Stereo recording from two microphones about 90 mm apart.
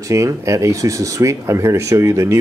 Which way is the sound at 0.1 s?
35° right (ahead or behind).